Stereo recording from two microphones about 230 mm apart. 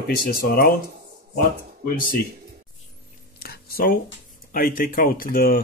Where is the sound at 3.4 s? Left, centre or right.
Left.